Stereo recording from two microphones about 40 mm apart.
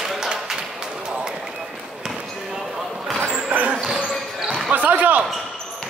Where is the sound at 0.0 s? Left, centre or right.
Centre.